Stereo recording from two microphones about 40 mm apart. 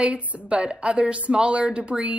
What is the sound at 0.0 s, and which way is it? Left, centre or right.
A woman's voice, right.